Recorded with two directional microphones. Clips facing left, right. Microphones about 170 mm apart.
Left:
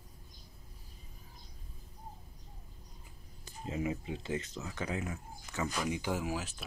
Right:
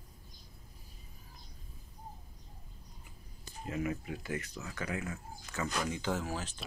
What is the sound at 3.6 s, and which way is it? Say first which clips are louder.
Speech: even; 25° left (ahead or behind).